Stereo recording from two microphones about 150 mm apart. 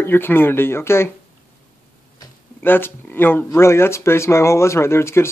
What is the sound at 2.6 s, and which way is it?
Speech, 15° left (ahead or behind).